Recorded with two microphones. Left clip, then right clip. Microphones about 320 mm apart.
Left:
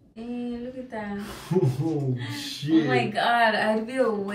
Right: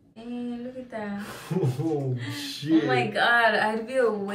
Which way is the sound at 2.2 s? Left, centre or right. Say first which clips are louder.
Right 1 dB; centre.